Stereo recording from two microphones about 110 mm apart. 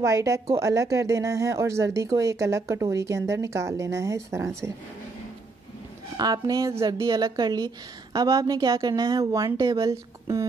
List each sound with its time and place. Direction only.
0.0 s speech: 25° right (ahead or behind)
6.1 s a woman's voice: 35° right (ahead or behind)